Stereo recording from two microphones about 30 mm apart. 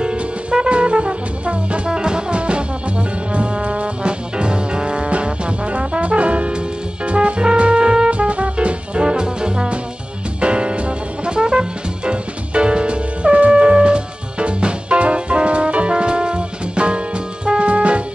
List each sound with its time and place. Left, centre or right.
0.0 s music: right
1.9 s brass instrument: right
7.1 s music: right
8.1 s music: right
9.0 s brass instrument: right
10.4 s music: right